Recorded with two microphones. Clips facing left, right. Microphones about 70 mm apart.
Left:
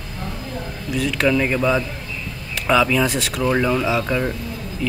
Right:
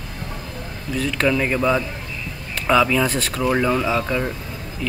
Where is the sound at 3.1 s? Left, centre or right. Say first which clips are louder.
Even; centre.